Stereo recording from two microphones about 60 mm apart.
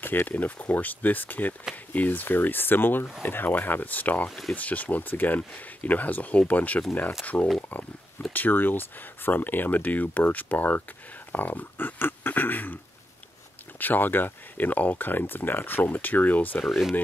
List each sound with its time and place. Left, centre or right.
0.0 s speech: left
13.7 s speech: left
16.6 s speech: centre